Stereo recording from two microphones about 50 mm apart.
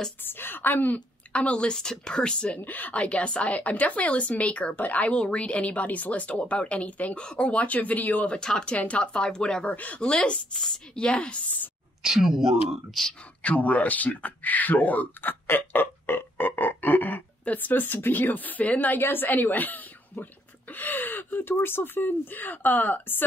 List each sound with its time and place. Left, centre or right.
0.2 s a woman's voice: left
1.3 s a woman's voice: left
2.6 s a woman's voice: left
8.3 s speech: centre
8.7 s a woman's voice: left
9.7 s a woman's voice: left
10.0 s a woman's voice: centre
11.1 s a woman's voice: left
12.0 s speech: centre
13.0 s speech: centre
13.4 s speech: left
15.4 s speech: left